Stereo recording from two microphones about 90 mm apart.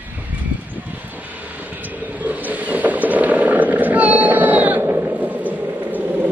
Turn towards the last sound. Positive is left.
turn(degrees=-15)  # may be behind; listen again after turning